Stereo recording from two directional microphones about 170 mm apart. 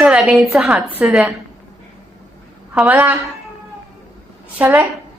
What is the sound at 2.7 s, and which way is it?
Speech, 10° right (ahead or behind).